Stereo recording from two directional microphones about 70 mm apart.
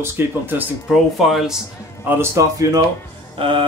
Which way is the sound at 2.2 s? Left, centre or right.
Right.